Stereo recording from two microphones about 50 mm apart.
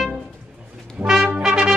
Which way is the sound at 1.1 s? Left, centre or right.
Centre.